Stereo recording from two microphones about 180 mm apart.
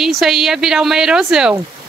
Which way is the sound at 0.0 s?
Centre (ahead or behind).